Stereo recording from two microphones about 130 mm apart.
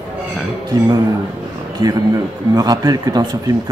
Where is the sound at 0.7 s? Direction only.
30° right (ahead or behind).